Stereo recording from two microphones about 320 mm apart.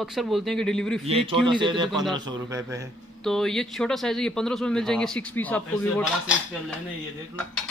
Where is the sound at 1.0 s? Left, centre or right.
Centre.